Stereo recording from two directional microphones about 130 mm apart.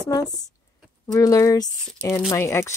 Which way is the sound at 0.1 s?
30° left (ahead or behind).